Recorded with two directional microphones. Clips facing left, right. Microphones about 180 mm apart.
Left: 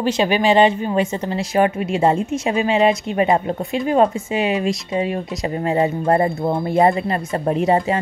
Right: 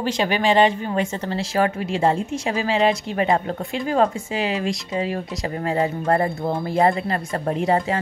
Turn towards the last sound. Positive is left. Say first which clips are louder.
# left 3 dB
turn(degrees=20)  # may be behind; listen again after turning